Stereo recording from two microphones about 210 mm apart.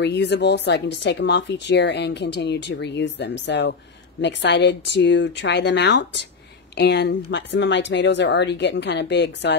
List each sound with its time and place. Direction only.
0.0 s speech: 55° left (ahead or behind)